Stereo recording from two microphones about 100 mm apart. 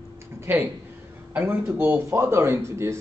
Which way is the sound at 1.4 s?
20° right (ahead or behind).